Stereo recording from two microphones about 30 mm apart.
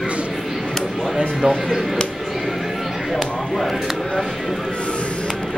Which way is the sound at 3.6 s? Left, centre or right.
Centre.